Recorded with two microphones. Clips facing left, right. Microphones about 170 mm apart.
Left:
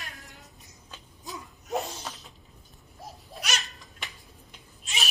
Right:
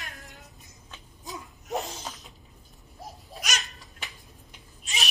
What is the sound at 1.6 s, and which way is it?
Laughter, 20° right (ahead or behind).